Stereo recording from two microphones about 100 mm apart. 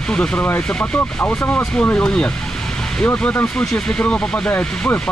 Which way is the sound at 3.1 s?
20° left (ahead or behind).